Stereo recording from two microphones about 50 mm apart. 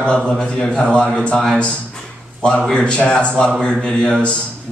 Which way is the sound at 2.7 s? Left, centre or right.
Centre.